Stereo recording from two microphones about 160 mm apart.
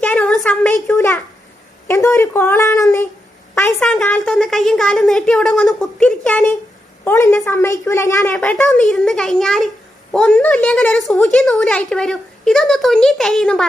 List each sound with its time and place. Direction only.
0.0 s a sound: 5° left (ahead or behind)
1.9 s speech: 15° left (ahead or behind)
3.8 s a woman's voice: 5° left (ahead or behind)
8.4 s a woman's voice: 5° left (ahead or behind)